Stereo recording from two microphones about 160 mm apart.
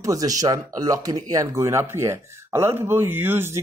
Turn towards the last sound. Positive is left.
turn(degrees=-15)  # may be behind; listen again after turning